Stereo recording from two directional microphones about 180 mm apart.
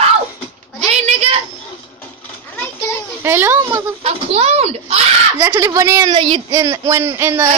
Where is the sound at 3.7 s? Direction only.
35° right (ahead or behind).